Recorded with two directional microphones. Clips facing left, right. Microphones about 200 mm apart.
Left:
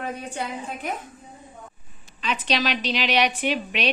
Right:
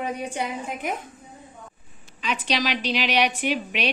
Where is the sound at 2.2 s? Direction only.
10° right (ahead or behind).